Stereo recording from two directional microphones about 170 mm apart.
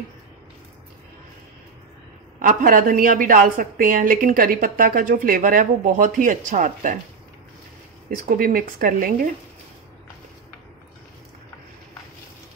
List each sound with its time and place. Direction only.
2.4 s a woman's voice: 55° right (ahead or behind)
8.4 s speech: 55° right (ahead or behind)